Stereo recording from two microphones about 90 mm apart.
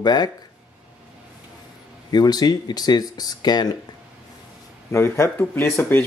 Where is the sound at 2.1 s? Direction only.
45° left (ahead or behind).